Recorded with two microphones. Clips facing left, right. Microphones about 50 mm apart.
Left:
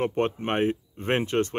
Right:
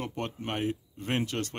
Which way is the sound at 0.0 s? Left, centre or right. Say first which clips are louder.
Left 9 dB; left.